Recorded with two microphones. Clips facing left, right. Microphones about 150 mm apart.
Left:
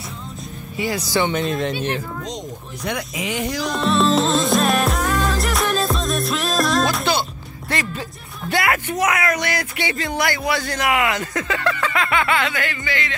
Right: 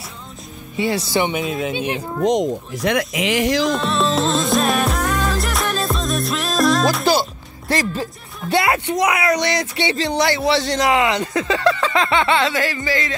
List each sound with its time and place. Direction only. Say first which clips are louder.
0.7 s speech: right 2 dB; 25° right (ahead or behind)
1.3 s speech: left 1 dB; 5° right (ahead or behind)
1.7 s speech: right 1 dB; 15° right (ahead or behind)
2.2 s speech: right 13 dB; 80° right
3.7 s music: left 2 dB; centre (ahead or behind)
7.9 s speech: right 5 dB; 30° right (ahead or behind); by 9.2 s 15° right (ahead or behind)
9.2 s speech: right 3 dB; 25° right (ahead or behind)